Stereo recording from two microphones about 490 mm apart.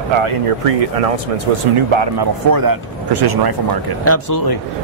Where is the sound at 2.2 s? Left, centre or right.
Right.